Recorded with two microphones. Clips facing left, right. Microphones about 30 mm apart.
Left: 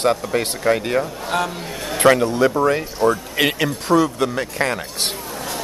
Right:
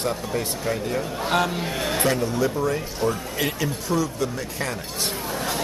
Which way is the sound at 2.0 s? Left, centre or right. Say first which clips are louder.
Left 10 dB; left.